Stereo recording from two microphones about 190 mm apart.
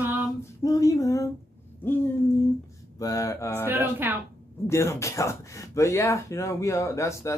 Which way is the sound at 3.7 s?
10° right (ahead or behind).